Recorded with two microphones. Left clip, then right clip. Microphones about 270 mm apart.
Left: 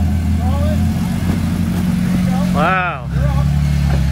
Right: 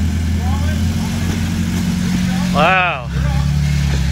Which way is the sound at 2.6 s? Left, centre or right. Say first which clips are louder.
Right 3 dB; centre.